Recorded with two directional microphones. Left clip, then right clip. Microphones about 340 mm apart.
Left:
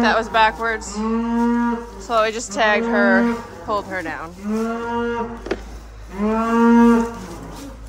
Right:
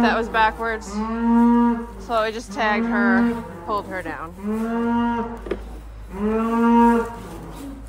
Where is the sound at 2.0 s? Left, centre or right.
Centre.